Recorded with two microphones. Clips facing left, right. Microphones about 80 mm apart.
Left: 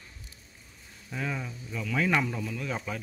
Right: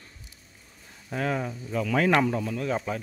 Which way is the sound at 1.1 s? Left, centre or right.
Right.